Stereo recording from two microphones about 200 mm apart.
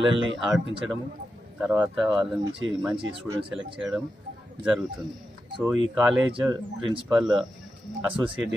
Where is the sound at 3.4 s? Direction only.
25° right (ahead or behind).